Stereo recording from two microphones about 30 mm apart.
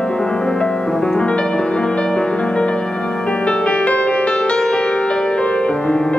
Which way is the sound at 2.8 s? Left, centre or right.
Left.